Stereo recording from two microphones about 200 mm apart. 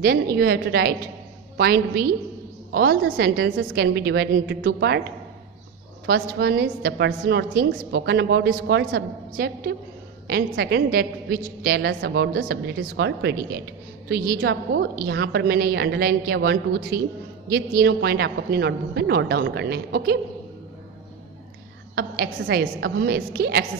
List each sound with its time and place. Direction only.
0.0 s a woman's voice: 50° right (ahead or behind)
6.0 s a woman's voice: 50° right (ahead or behind)
11.9 s a woman's voice: 65° right (ahead or behind)
21.9 s a woman's voice: 50° right (ahead or behind)